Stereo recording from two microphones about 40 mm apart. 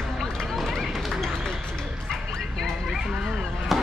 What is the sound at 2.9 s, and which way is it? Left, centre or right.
Chop, centre.